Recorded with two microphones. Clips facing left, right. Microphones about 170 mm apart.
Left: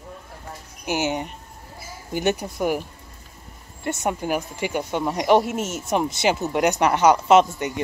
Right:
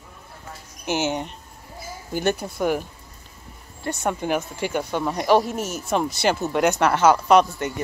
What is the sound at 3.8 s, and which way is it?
Speech, 20° left (ahead or behind).